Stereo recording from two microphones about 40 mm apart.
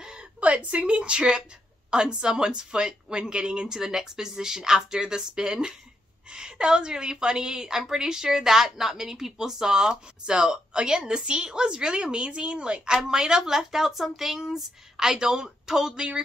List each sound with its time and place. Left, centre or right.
0.4 s a woman's voice: right